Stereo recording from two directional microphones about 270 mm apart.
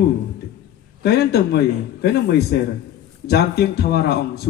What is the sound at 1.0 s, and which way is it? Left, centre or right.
Speech, left.